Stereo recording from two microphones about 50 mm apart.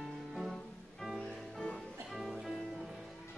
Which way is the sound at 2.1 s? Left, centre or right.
Centre.